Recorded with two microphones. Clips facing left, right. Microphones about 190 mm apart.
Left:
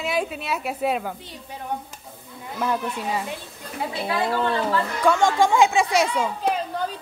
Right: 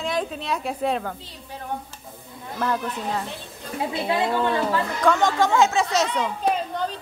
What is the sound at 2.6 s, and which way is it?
Speech, 10° left (ahead or behind).